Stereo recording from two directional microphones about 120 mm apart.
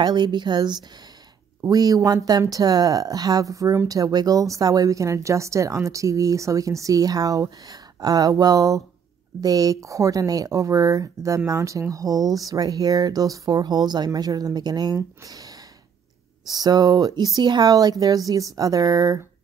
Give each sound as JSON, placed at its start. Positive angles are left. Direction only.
{"t": 0.0, "sound": "speech", "side_deg": -35}